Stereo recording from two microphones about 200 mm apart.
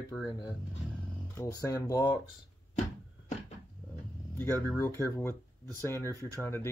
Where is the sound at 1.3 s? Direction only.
15° left (ahead or behind).